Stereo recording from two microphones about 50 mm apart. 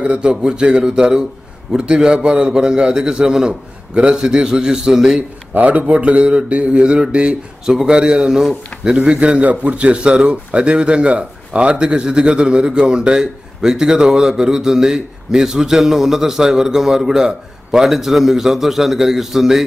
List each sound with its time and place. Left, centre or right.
0.0 s mantra: right
0.3 s speech: centre
5.5 s mantra: right
7.6 s speech: centre
8.9 s mantra: right
9.4 s speech: right; by 19.6 s centre